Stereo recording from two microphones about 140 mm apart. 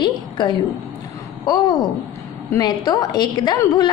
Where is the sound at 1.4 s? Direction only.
30° left (ahead or behind).